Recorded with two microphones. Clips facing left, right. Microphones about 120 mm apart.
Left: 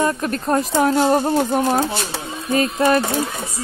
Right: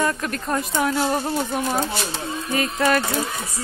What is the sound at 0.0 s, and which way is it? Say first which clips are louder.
Speech: left 4 dB; 25° left (ahead or behind).